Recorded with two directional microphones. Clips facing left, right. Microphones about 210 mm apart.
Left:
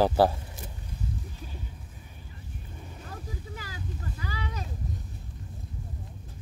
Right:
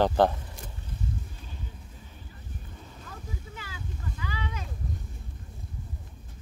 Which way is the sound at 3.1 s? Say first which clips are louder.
Left 2 dB; 40° left (ahead or behind).